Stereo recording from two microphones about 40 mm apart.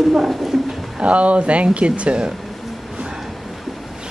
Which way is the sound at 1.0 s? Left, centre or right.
Right.